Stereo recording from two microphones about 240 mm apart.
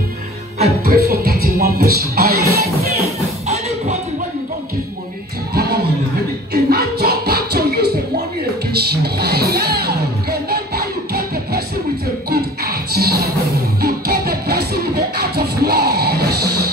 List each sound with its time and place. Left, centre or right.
0.6 s music: right
3.4 s music: right
5.5 s music: right